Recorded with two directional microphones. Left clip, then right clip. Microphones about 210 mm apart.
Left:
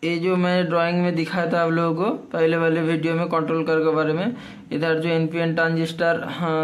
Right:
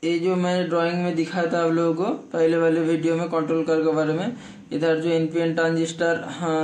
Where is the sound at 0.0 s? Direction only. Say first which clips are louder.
Left 1 dB; 20° left (ahead or behind).